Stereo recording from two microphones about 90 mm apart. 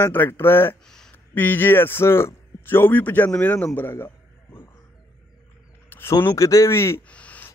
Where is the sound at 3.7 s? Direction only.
25° left (ahead or behind).